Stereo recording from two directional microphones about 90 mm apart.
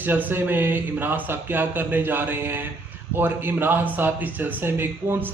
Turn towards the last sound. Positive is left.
turn(degrees=-25)  # may be behind; listen again after turning